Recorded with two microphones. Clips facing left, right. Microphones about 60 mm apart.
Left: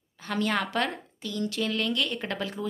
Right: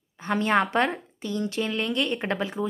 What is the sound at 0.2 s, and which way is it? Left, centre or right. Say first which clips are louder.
A woman's voice: right 5 dB; right.